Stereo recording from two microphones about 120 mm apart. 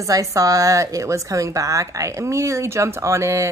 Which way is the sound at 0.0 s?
30° right (ahead or behind).